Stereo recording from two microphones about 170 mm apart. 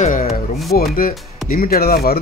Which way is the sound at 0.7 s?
60° left (ahead or behind).